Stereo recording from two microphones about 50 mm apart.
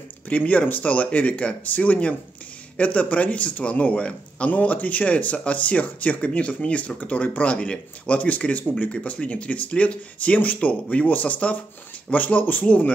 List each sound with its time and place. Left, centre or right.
0.3 s speech: left